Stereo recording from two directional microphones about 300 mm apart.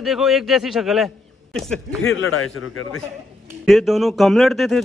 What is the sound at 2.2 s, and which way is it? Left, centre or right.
Speech, left.